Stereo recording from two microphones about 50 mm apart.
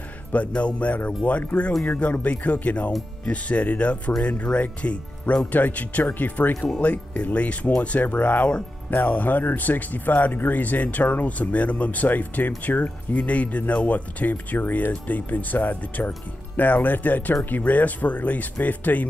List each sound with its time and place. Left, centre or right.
0.6 s speech: left